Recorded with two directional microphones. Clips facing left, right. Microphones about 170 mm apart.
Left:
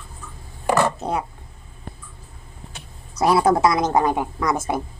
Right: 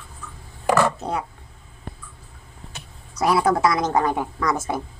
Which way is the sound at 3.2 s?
25° left (ahead or behind).